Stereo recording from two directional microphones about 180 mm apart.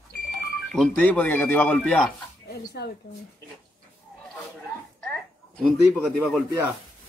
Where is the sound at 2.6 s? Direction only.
65° left (ahead or behind).